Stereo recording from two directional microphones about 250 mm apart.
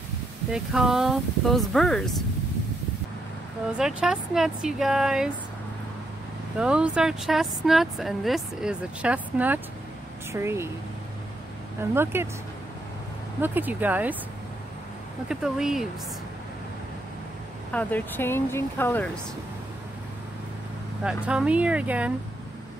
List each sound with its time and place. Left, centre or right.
0.5 s speech: centre
3.7 s speech: centre
6.6 s speech: centre
11.9 s speech: centre
13.4 s speech: centre
15.2 s speech: centre
17.7 s speech: centre
21.0 s speech: centre